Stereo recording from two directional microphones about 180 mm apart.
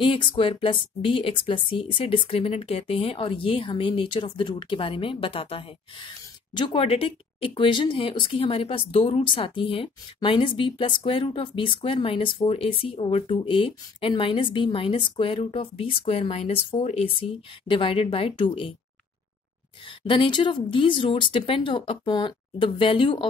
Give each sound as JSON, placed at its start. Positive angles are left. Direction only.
{"t": 0.0, "sound": "a woman's voice", "side_deg": 30}
{"t": 20.0, "sound": "a woman's voice", "side_deg": 30}